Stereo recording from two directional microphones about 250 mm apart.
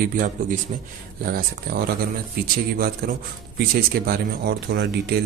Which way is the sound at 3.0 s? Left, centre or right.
Right.